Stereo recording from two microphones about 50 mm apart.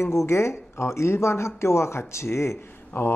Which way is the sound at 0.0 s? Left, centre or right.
Left.